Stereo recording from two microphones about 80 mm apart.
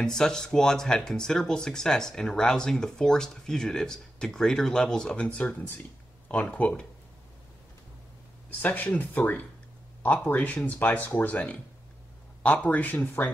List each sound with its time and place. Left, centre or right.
0.0 s speech: centre
8.5 s speech: left